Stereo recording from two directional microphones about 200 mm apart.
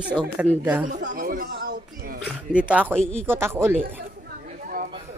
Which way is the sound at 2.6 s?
5° right (ahead or behind).